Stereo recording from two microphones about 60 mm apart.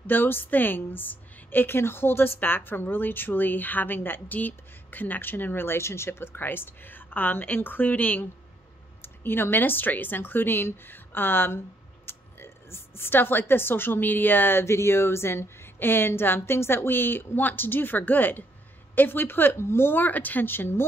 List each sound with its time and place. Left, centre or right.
0.0 s a woman's voice: left
9.0 s a woman's voice: left